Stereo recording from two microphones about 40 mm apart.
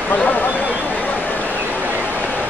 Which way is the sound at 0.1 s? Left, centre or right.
Left.